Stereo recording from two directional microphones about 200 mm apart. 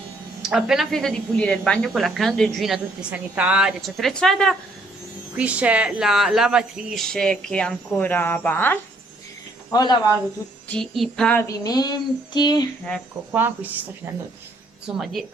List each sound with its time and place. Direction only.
0.4 s speech: 5° right (ahead or behind); by 9.9 s 20° left (ahead or behind)
10.7 s speech: centre (ahead or behind)
11.4 s speech: 20° left (ahead or behind)
13.3 s speech: 10° right (ahead or behind)
14.9 s speech: centre (ahead or behind)